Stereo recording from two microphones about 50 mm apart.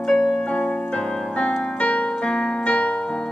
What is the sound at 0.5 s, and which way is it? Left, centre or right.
Piano, left.